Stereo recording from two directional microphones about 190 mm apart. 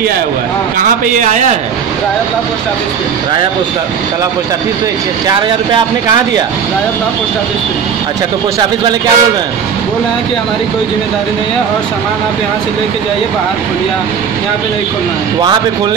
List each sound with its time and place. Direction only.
1.1 s a man's voice: 40° right (ahead or behind)
8.5 s speech: 20° right (ahead or behind)